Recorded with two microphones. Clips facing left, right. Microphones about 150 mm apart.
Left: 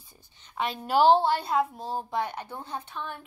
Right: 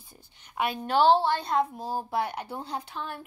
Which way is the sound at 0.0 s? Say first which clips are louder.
Right 3 dB; 10° right (ahead or behind).